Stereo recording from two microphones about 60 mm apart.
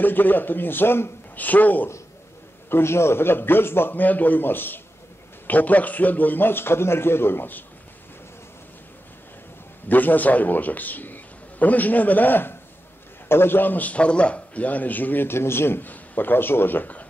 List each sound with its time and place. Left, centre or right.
0.0 s a man's voice: left
1.3 s a man's voice: left
2.7 s a man's voice: left
9.8 s a man's voice: left